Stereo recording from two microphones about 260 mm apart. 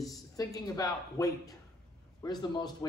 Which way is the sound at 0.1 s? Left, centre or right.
Centre.